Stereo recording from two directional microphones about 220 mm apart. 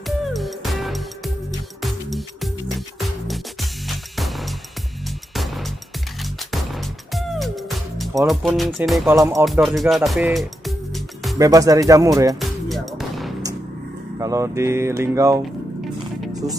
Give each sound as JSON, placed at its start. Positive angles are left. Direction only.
{"t": 0.3, "sound": "music", "side_deg": 0}
{"t": 7.2, "sound": "music", "side_deg": 0}
{"t": 8.3, "sound": "speech", "side_deg": 0}
{"t": 9.1, "sound": "speech", "side_deg": -15}
{"t": 9.4, "sound": "speech", "side_deg": 0}
{"t": 11.3, "sound": "speech", "side_deg": -15}
{"t": 12.4, "sound": "music", "side_deg": 0}
{"t": 14.1, "sound": "speech", "side_deg": -15}